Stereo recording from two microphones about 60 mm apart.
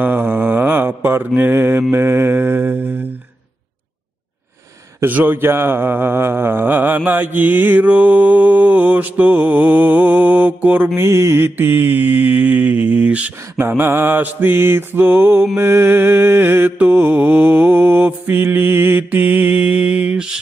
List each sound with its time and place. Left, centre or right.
0.0 s mantra: right
5.0 s speech: right
11.0 s speech: right
13.6 s speech: right; by 20.3 s centre